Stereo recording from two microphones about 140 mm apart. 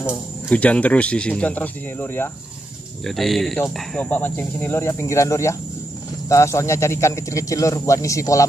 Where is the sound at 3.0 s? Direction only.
Centre (ahead or behind); by 8.4 s 25° left (ahead or behind).